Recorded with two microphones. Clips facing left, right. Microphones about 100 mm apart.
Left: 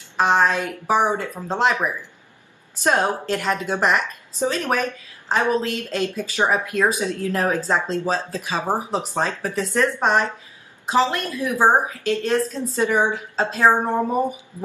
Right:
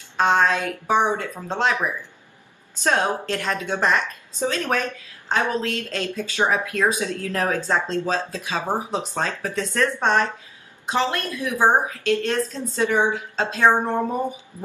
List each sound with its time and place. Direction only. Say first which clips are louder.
0.2 s a woman's voice: left 1 dB; 5° left (ahead or behind)